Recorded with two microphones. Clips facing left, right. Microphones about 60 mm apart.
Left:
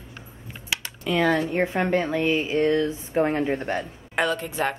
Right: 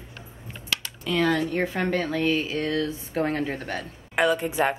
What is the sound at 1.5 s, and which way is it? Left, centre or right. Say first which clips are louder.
Speech: left 3 dB; centre.